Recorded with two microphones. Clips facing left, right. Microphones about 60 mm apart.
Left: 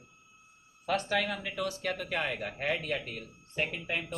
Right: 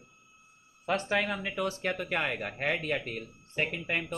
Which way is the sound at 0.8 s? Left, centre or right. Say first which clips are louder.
Right 1 dB; right.